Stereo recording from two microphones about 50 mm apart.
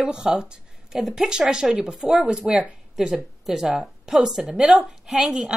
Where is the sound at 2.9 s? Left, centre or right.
Centre.